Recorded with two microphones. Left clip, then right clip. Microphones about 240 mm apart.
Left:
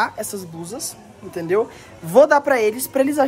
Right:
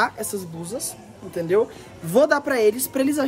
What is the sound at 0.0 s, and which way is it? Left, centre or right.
A woman's voice, centre.